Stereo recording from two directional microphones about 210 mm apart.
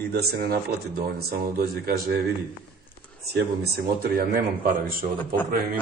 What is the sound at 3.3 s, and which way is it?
A man's voice, 50° right (ahead or behind).